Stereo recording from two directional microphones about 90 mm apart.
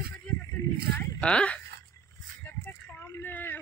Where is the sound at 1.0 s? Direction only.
10° left (ahead or behind).